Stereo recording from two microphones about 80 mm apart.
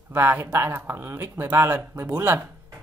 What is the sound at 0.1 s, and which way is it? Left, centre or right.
Speech, right.